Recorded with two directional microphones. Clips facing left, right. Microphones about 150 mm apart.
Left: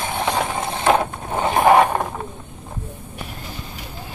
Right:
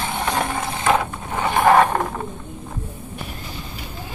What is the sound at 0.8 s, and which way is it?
Mechanisms, 25° left (ahead or behind).